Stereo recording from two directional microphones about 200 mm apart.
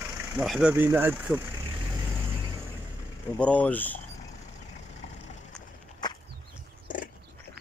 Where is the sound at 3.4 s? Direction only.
5° left (ahead or behind).